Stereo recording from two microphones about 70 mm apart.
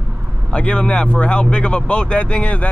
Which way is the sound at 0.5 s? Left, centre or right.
Centre.